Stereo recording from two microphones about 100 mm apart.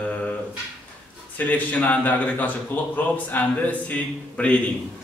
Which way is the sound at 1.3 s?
15° left (ahead or behind).